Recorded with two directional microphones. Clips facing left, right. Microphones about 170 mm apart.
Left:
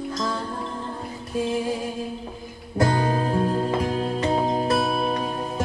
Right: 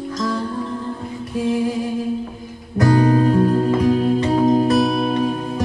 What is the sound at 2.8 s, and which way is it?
Music, 25° left (ahead or behind).